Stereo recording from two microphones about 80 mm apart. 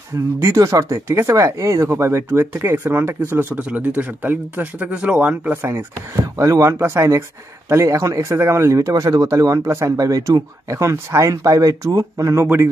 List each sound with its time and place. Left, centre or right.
0.6 s speech: right
2.2 s speech: right
5.7 s speech: right